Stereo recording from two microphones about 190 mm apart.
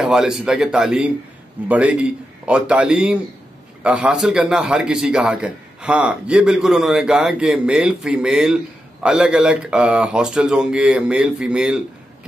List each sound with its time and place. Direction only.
0.0 s a man's voice: centre (ahead or behind)